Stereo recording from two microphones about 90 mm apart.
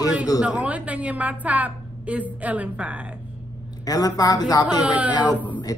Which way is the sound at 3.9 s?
45° left (ahead or behind).